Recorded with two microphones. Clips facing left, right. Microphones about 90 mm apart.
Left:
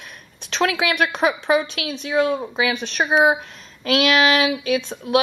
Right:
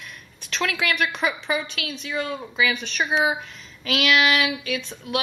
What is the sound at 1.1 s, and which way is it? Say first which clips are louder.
A woman's voice: left 7 dB; 45° left (ahead or behind).